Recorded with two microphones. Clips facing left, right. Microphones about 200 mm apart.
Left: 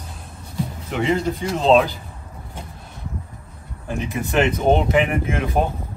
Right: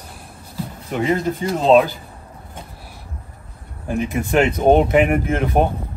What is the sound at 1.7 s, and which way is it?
Speech, 5° right (ahead or behind).